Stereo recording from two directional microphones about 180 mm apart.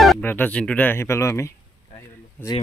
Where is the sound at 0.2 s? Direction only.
10° left (ahead or behind).